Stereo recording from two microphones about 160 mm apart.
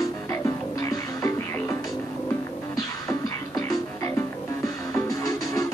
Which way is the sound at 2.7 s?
20° left (ahead or behind).